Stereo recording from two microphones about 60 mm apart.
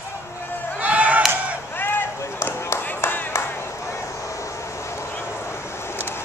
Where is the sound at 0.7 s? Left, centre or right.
Right.